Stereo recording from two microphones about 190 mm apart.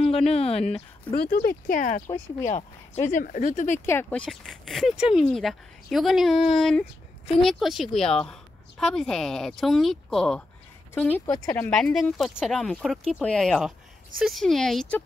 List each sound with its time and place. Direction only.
0.0 s speech: 35° left (ahead or behind)
1.3 s speech: 50° left (ahead or behind)
3.8 s a woman's voice: 10° left (ahead or behind)
11.7 s a woman's voice: centre (ahead or behind)